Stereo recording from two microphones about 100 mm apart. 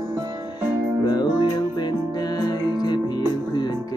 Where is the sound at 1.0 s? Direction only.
45° left (ahead or behind).